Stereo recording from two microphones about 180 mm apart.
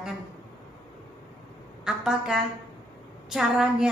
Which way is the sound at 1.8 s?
5° right (ahead or behind).